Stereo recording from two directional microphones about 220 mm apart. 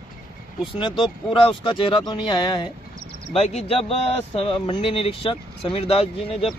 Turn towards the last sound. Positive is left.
turn(degrees=25)  # may be behind; listen again after turning